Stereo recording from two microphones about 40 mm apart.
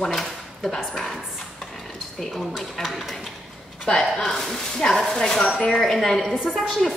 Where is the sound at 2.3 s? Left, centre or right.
Centre.